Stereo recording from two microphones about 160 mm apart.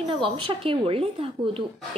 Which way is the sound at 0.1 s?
35° right (ahead or behind).